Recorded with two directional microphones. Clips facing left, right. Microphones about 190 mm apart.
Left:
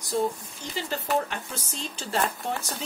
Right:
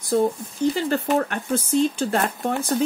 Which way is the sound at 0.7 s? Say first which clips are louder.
Right 2 dB; 55° right (ahead or behind).